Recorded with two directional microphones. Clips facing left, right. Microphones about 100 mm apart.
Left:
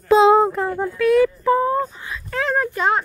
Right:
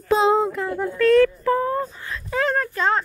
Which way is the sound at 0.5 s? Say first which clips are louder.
Left 3 dB; 35° left (ahead or behind).